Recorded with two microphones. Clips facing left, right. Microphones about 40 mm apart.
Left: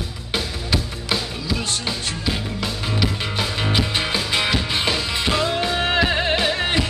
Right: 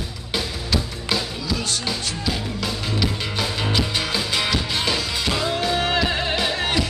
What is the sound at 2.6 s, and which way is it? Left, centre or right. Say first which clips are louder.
Music: left 1 dB; centre.